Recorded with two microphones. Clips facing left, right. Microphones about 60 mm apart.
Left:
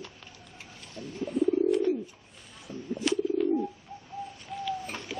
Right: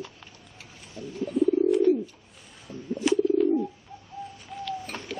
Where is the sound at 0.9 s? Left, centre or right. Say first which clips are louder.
Right 3 dB; centre.